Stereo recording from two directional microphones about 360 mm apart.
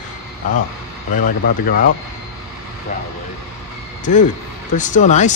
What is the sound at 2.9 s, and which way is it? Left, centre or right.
Speech, left.